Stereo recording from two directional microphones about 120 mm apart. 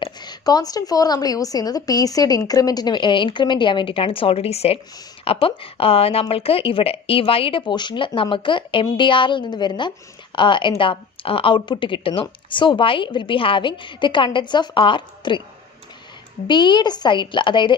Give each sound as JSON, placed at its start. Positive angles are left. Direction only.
{"t": 0.0, "sound": "a woman's voice", "side_deg": 35}
{"t": 16.4, "sound": "a woman's voice", "side_deg": 40}